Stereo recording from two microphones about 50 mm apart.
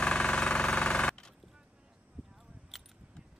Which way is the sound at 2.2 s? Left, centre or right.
Centre.